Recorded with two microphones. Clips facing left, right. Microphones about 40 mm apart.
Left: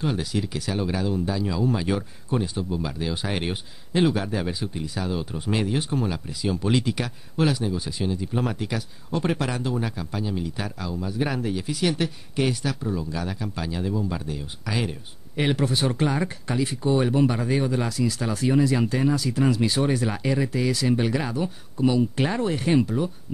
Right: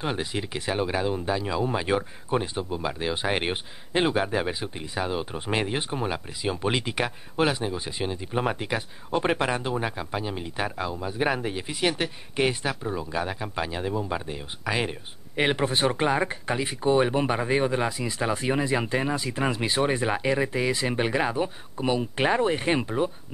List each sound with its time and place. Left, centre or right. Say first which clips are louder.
0.0 s speech: left 2 dB; right